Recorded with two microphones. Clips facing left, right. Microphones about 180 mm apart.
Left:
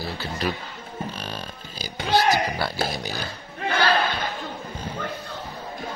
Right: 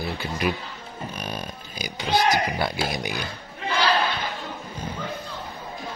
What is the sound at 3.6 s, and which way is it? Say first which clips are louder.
Battle cry: left 1 dB; 55° left (ahead or behind).